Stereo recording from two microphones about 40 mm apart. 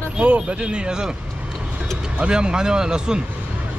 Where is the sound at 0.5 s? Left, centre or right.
Right.